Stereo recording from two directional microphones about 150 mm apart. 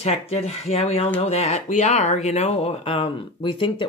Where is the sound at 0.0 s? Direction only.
45° left (ahead or behind).